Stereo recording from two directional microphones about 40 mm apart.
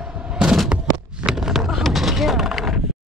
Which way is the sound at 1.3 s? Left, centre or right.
Centre.